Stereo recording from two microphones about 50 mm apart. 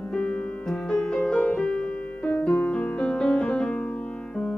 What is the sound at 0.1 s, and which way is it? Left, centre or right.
Music, left.